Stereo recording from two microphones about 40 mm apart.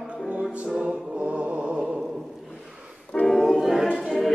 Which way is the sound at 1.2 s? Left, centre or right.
Right.